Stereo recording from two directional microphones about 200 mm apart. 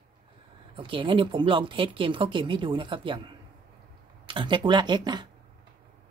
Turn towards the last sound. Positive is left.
turn(degrees=-20)  # may be behind; listen again after turning